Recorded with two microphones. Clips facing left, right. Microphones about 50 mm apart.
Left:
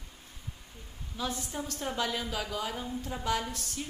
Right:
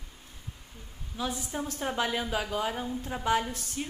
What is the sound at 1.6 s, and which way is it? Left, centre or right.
A woman's voice, right.